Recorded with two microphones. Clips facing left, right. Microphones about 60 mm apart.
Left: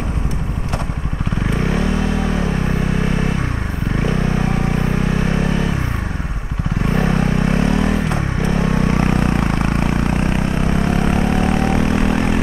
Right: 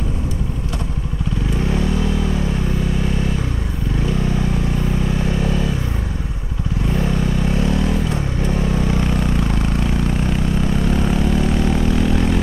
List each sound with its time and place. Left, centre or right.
1.6 s vehicle: left
5.1 s vehicle: left
6.9 s vehicle: left